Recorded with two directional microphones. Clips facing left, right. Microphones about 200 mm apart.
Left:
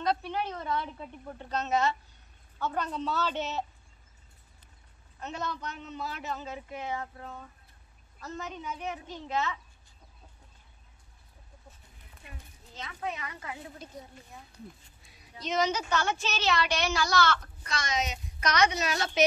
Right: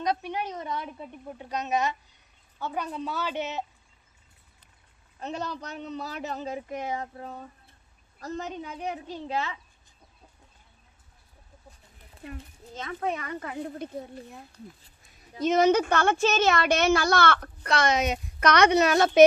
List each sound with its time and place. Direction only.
0.0 s a woman's voice: 15° right (ahead or behind)
5.2 s a man's voice: 35° right (ahead or behind)
12.7 s speech: 50° right (ahead or behind)
15.0 s a woman's voice: 50° right (ahead or behind)